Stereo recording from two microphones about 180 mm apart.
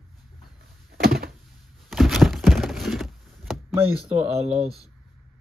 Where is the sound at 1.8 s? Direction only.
Centre (ahead or behind).